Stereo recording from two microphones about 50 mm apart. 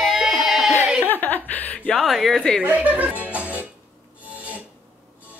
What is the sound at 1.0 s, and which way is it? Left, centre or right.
Chuckle, left.